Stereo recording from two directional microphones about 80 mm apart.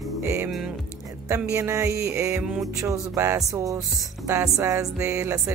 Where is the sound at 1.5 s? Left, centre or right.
Right.